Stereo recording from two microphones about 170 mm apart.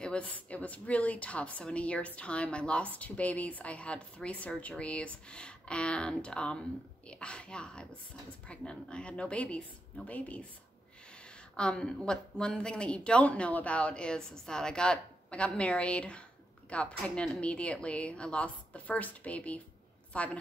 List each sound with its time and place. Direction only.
0.0 s a woman's voice: 5° left (ahead or behind)
11.5 s a woman's voice: 5° left (ahead or behind)